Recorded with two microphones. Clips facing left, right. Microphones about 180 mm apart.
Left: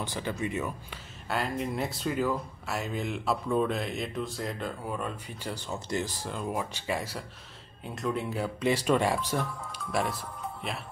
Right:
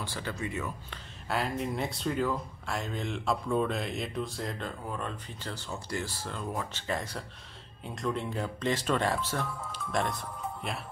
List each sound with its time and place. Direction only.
0.0 s speech: 20° left (ahead or behind)
1.3 s speech: centre (ahead or behind)
9.8 s speech: 5° left (ahead or behind)